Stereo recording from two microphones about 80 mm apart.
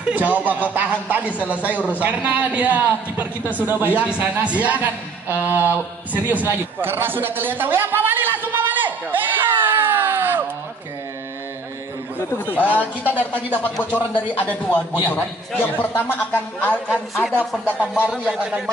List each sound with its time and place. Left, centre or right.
0.0 s a man's voice: centre
12.4 s a man's voice: left
16.9 s a woman's voice: centre
17.7 s a man's voice: right
18.2 s a man's voice: centre